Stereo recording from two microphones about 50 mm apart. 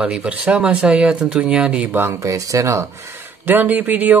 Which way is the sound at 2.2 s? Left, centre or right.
Right.